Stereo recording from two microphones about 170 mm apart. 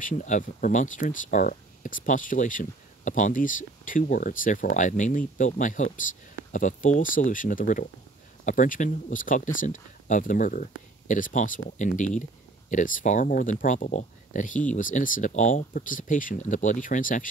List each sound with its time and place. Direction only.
0.0 s speech: 45° left (ahead or behind)